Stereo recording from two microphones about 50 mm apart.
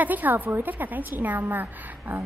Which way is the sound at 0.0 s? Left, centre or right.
Right.